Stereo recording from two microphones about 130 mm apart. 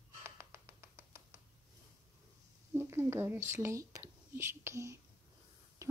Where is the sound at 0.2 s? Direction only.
20° right (ahead or behind).